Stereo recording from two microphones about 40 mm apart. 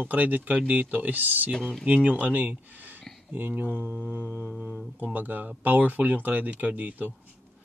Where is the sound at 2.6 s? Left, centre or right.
Right.